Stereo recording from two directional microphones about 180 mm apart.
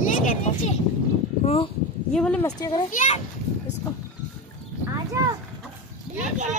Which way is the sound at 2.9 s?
45° left (ahead or behind).